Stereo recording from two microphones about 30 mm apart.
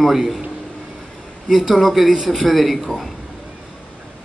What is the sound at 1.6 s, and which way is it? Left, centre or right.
A man's voice, centre.